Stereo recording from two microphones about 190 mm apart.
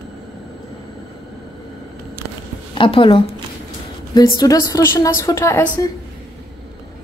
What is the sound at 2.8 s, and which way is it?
A woman's voice, 25° left (ahead or behind).